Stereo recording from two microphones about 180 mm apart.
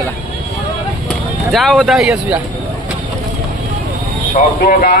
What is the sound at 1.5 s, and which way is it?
Speech, 5° left (ahead or behind).